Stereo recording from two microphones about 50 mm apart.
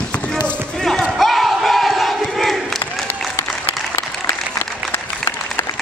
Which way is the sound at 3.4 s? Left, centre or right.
Left.